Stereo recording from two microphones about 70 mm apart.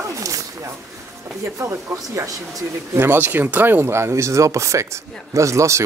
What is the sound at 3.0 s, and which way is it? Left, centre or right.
Speech, right.